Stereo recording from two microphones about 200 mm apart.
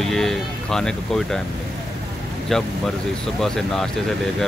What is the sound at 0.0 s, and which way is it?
Speech, centre (ahead or behind).